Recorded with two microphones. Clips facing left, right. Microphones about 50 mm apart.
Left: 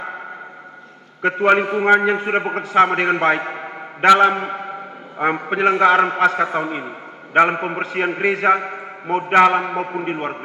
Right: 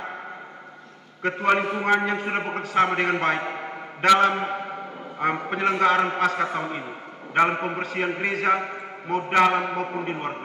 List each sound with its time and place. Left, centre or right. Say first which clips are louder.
1.2 s a man's voice: left 6 dB; left
3.5 s a sound: left 3 dB; left
5.2 s a man's voice: left 6 dB; left